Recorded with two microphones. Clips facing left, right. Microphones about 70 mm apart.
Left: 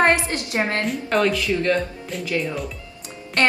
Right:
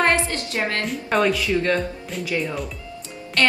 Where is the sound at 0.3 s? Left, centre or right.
Left.